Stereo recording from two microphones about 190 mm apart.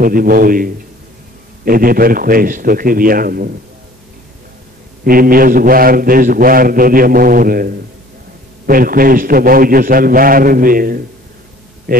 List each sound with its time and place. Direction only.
0.0 s a man's voice: 50° right (ahead or behind)
5.0 s a man's voice: 50° right (ahead or behind)